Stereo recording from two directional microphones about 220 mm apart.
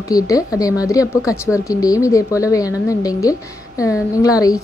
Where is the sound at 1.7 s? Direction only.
15° left (ahead or behind).